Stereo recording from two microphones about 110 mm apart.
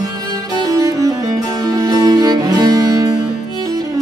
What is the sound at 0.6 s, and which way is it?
Music, 35° right (ahead or behind).